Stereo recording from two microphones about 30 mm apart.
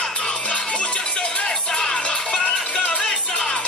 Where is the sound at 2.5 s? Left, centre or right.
Left.